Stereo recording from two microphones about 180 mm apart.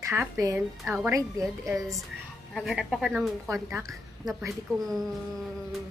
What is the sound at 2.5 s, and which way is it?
A woman's voice, centre (ahead or behind).